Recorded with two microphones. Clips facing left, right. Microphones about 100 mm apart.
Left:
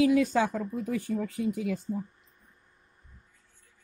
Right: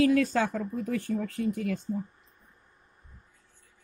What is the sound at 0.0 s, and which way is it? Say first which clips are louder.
Speech: even; 15° left (ahead or behind).